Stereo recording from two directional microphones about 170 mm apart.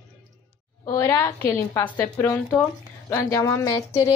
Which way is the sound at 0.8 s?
15° left (ahead or behind).